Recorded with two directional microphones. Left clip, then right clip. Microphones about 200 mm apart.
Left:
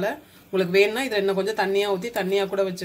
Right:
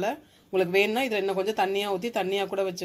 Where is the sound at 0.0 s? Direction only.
35° right (ahead or behind).